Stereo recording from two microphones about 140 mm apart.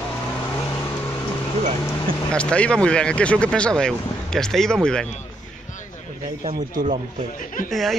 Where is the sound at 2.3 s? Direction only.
10° left (ahead or behind).